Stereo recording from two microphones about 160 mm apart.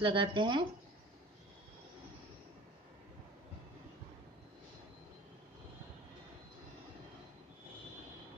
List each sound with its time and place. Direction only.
0.0 s speech: 30° right (ahead or behind)